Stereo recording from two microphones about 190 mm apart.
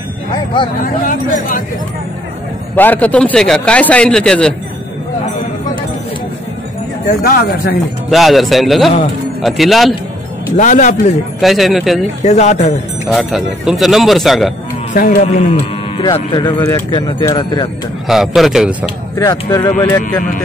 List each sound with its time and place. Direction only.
0.8 s speech: 45° left (ahead or behind)
2.7 s a man's voice: 10° left (ahead or behind)
7.1 s speech: 50° left (ahead or behind)
8.1 s a man's voice: centre (ahead or behind)
10.6 s a man's voice: 40° left (ahead or behind)
11.4 s a man's voice: centre (ahead or behind)
12.2 s a man's voice: 40° left (ahead or behind)
13.1 s a man's voice: centre (ahead or behind)
15.0 s speech: 50° left (ahead or behind)
15.2 s a man's voice: 35° left (ahead or behind)
16.0 s speech: 25° left (ahead or behind)
18.0 s a man's voice: centre (ahead or behind)
19.1 s speech: 20° left (ahead or behind)